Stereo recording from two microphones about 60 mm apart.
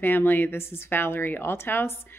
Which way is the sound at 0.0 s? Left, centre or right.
Left.